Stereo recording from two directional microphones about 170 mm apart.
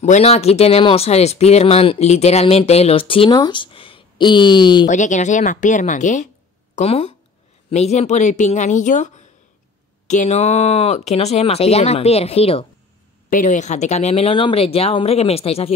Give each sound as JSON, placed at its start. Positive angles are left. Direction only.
{"t": 0.0, "sound": "speech", "side_deg": 40}
{"t": 4.8, "sound": "speech", "side_deg": 45}
{"t": 13.3, "sound": "speech", "side_deg": 50}